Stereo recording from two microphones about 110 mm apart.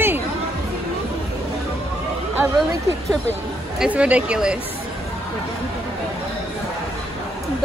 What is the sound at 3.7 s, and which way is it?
Speech, 10° right (ahead or behind).